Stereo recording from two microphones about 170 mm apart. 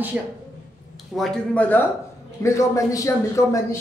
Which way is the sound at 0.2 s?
5° right (ahead or behind).